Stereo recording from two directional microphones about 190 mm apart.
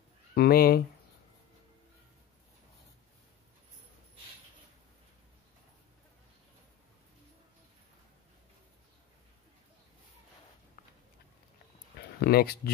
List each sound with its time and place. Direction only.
0.3 s speech: 55° left (ahead or behind)
10.8 s a sound: 45° left (ahead or behind)
12.2 s speech: 55° left (ahead or behind)